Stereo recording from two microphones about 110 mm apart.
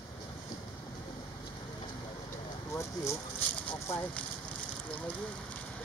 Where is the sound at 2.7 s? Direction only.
25° left (ahead or behind).